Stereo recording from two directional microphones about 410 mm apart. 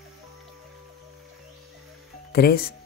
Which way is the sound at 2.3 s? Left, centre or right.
Left.